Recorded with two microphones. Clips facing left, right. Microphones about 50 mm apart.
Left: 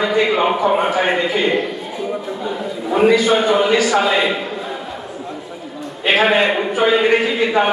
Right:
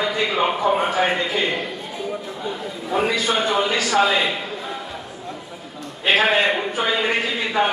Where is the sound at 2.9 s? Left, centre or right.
Centre.